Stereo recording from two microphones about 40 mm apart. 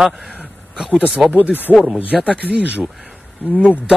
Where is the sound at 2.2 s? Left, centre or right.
Right.